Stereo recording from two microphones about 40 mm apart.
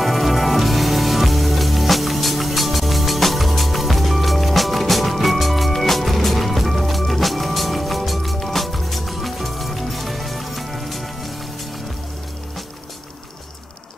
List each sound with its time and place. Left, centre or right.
0.0 s music: centre